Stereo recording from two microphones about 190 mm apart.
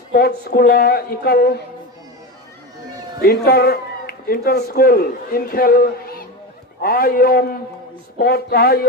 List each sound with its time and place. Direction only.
0.1 s speech: 50° left (ahead or behind)
3.2 s a man's voice: 55° left (ahead or behind)
8.2 s a sound: 55° left (ahead or behind)